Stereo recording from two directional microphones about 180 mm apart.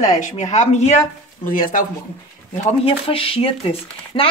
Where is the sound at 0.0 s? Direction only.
45° left (ahead or behind).